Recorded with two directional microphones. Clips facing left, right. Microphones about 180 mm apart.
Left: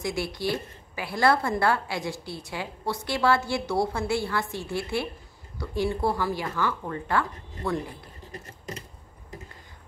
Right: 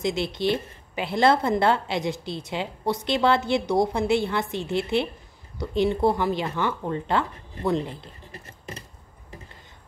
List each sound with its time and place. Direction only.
0.0 s a woman's voice: 20° right (ahead or behind)